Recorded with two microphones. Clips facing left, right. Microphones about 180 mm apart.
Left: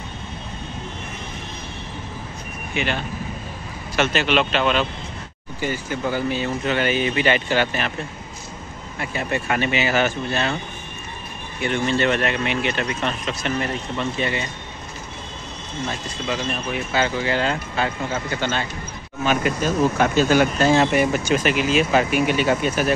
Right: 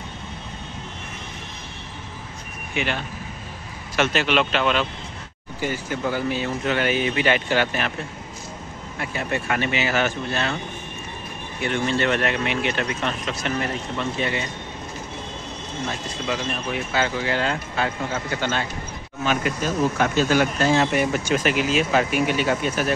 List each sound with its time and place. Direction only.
2.7 s speech: 5° right (ahead or behind)
9.0 s speech: 5° left (ahead or behind)
11.6 s speech: centre (ahead or behind)
16.3 s speech: centre (ahead or behind)
20.0 s speech: 20° left (ahead or behind)
20.9 s speech: 5° left (ahead or behind)